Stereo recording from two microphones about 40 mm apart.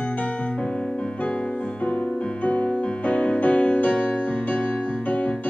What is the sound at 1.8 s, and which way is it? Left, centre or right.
Music, left.